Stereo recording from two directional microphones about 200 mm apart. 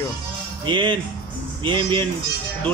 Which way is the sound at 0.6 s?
25° right (ahead or behind).